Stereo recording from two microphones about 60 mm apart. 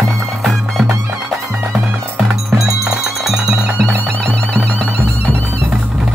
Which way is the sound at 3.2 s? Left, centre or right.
Centre.